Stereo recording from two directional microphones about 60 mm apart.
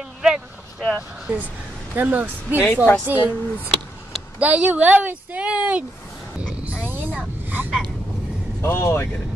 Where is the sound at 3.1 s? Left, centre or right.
Right.